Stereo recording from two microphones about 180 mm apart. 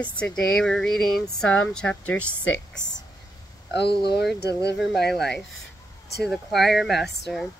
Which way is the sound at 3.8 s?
65° left (ahead or behind).